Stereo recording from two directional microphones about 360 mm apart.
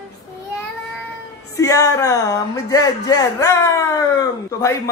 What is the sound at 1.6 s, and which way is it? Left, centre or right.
Speech, centre.